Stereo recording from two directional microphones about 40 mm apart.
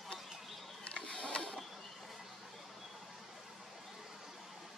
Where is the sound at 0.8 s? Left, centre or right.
Left.